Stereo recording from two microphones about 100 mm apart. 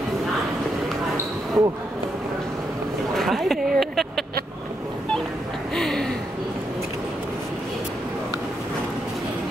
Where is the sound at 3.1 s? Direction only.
Centre (ahead or behind).